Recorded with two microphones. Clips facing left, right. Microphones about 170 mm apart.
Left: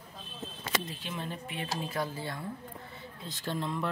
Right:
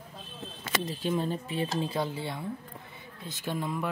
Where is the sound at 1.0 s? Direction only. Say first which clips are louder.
Right 9 dB; 40° right (ahead or behind); by 2.4 s 20° right (ahead or behind).